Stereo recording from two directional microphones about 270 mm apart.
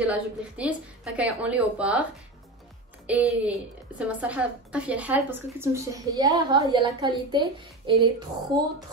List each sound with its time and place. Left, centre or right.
0.0 s a woman's voice: centre
3.1 s a woman's voice: centre